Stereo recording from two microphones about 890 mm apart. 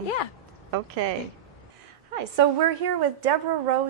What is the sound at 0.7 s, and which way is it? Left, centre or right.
Speech, right.